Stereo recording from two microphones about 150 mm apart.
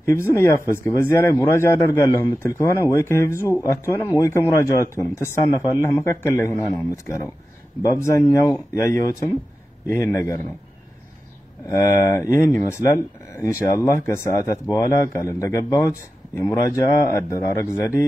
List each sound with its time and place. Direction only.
0.0 s speech: 20° left (ahead or behind)
11.7 s speech: 20° left (ahead or behind)